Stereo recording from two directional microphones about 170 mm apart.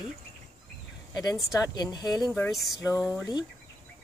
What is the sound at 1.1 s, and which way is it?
Speech, 20° left (ahead or behind).